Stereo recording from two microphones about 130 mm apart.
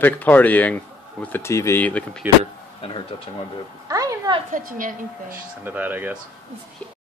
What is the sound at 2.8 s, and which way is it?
Speech, 45° left (ahead or behind).